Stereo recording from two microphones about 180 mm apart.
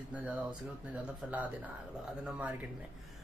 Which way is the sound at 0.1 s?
5° right (ahead or behind).